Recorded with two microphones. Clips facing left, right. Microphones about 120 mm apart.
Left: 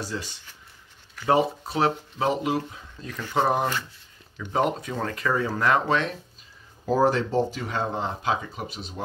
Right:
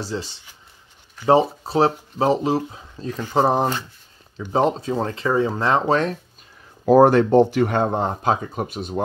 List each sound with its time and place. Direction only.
0.0 s speech: 30° right (ahead or behind)
6.9 s speech: 60° right (ahead or behind)